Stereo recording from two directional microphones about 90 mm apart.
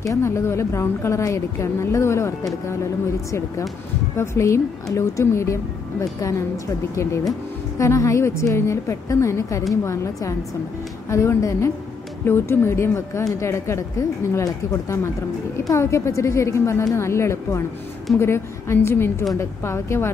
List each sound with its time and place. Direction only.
0.0 s speech: 35° left (ahead or behind)
11.1 s a woman's voice: 35° left (ahead or behind)